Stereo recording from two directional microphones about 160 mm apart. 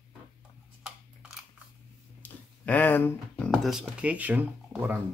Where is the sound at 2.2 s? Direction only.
10° left (ahead or behind).